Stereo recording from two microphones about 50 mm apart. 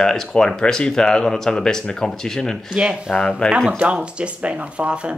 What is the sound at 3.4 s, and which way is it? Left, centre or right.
Speech, centre.